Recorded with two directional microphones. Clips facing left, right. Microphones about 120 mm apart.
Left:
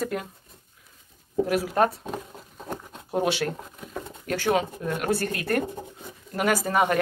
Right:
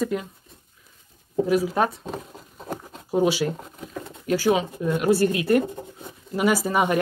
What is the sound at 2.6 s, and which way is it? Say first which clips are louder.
Bird: right 2 dB; centre (ahead or behind).